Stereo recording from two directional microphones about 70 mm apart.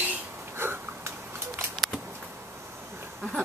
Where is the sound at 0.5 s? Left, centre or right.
Right.